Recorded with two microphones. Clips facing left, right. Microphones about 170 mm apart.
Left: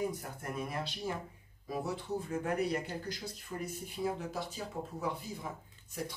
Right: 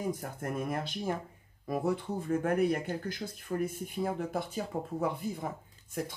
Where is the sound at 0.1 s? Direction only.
50° right (ahead or behind).